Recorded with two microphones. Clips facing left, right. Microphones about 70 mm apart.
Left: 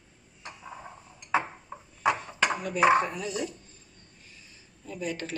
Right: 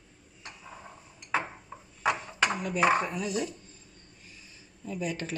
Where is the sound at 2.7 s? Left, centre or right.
Centre.